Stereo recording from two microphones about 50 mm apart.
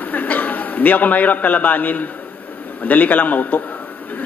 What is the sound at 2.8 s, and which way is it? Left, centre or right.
Speech, left.